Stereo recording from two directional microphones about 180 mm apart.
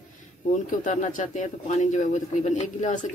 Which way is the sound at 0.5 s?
45° left (ahead or behind).